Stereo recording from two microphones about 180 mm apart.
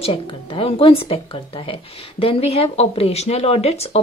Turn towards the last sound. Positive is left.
turn(degrees=35)  # may be behind; listen again after turning